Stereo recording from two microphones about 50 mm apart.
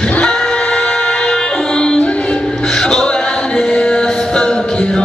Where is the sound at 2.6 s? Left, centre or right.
Centre.